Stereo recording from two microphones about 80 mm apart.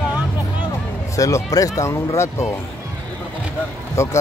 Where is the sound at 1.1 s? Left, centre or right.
Left.